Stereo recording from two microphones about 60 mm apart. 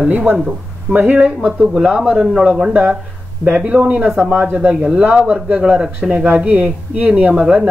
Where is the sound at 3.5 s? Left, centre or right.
Right.